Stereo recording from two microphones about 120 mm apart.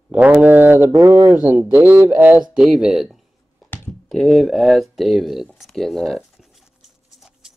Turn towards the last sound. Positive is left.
turn(degrees=-5)  # may be behind; listen again after turning